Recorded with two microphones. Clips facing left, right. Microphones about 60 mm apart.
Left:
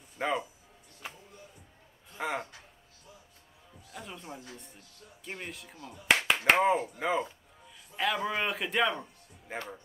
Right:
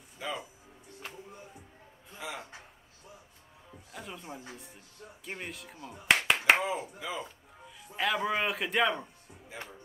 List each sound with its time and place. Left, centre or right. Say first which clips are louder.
0.2 s speech: left 6 dB; left
2.1 s speech: left 7 dB; left
3.9 s a man's voice: even; centre
4.3 s speech: right 1 dB; right
5.5 s a man's voice: right 1 dB; centre
6.0 s clapping: even; centre
6.6 s speech: left 7 dB; left
7.9 s a man's voice: right 1 dB; centre
9.5 s speech: left 5 dB; left